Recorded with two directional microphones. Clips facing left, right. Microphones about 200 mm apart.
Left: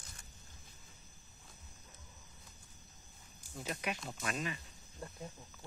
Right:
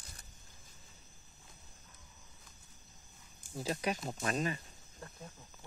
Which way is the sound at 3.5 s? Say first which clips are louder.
Right 5 dB; 30° right (ahead or behind).